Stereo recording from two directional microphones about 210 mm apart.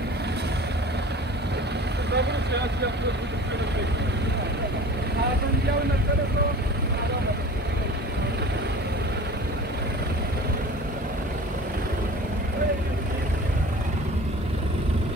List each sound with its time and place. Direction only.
2.1 s vehicle: 55° right (ahead or behind)